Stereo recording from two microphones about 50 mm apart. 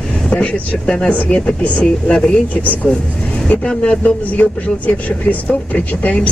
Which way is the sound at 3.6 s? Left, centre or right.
Left.